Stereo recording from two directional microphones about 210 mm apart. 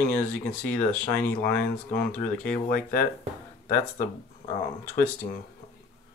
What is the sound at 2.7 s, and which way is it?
Speech, 40° left (ahead or behind).